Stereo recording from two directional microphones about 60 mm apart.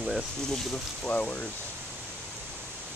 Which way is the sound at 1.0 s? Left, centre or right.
Left.